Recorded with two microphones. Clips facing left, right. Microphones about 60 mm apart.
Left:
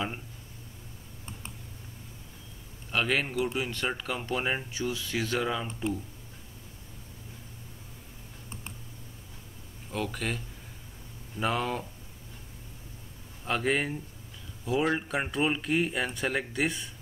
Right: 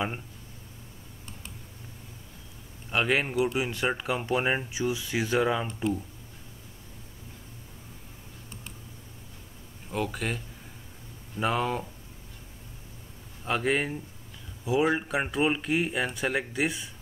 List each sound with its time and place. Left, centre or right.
2.9 s speech: centre
9.8 s speech: centre
13.4 s speech: centre